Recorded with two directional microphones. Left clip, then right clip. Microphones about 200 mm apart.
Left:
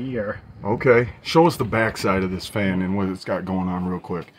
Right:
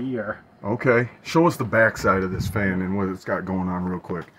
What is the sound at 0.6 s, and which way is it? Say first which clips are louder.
Speech: left 3 dB; 10° left (ahead or behind).